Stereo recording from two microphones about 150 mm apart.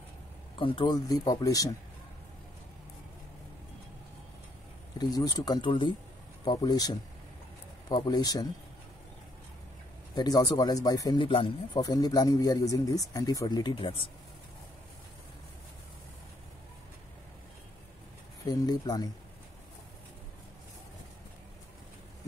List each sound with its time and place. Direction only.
0.6 s speech: 35° left (ahead or behind)
4.9 s speech: 25° left (ahead or behind)
10.1 s speech: 25° left (ahead or behind)
11.8 s speech: 25° left (ahead or behind)
18.4 s speech: 25° left (ahead or behind)